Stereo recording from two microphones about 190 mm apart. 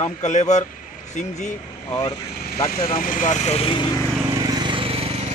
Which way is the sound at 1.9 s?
20° left (ahead or behind).